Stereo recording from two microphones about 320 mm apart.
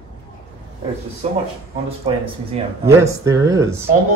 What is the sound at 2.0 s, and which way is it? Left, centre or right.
Speech, centre.